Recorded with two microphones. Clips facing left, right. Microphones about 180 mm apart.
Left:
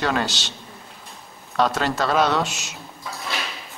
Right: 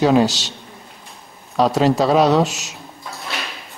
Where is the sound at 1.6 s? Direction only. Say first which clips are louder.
Right 6 dB; centre (ahead or behind).